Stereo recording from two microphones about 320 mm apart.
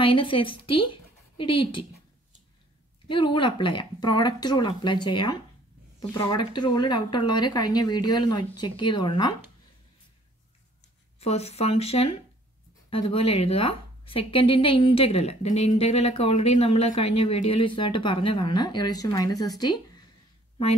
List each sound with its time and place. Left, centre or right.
0.0 s a woman's voice: centre
3.1 s a woman's voice: centre
11.1 s a woman's voice: centre